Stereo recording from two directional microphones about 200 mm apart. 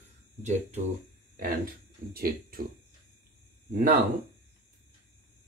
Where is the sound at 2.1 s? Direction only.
45° right (ahead or behind).